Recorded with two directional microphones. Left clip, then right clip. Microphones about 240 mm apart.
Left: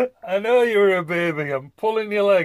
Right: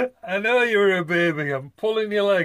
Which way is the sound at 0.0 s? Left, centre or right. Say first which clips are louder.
Left 2 dB; left.